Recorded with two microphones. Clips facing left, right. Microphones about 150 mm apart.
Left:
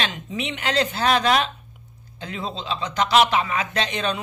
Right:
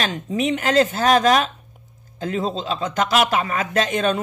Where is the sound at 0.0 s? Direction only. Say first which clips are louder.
Right 6 dB; 40° right (ahead or behind).